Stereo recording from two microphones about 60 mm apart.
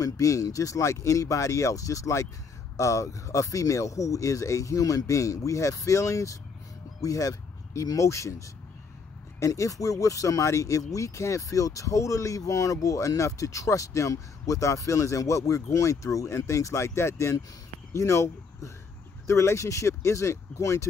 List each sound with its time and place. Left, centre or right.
0.0 s speech: left
7.0 s speech: left